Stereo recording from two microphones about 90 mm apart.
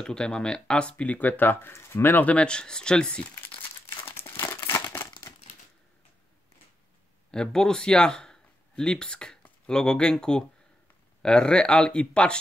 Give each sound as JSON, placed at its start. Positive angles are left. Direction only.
{"t": 0.0, "sound": "speech", "side_deg": 10}
{"t": 3.8, "sound": "crumpling", "side_deg": 25}
{"t": 7.2, "sound": "speech", "side_deg": 10}